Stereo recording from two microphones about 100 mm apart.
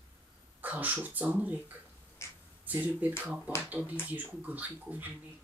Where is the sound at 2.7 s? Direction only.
15° right (ahead or behind).